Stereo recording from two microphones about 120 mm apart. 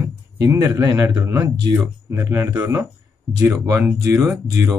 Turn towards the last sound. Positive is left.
turn(degrees=-5)  # may be behind; listen again after turning